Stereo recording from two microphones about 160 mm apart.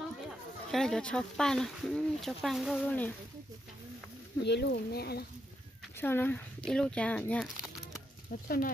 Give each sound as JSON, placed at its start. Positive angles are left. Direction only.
{"t": 0.7, "sound": "speech", "side_deg": 5}
{"t": 4.4, "sound": "speech", "side_deg": 90}
{"t": 5.9, "sound": "speech", "side_deg": 15}
{"t": 8.5, "sound": "speech", "side_deg": 60}